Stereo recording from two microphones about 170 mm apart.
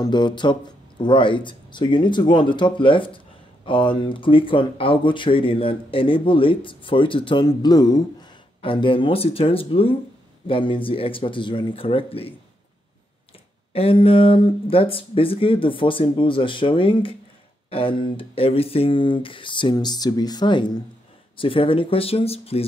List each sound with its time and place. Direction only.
0.0 s speech: 25° left (ahead or behind)
13.7 s speech: 35° left (ahead or behind)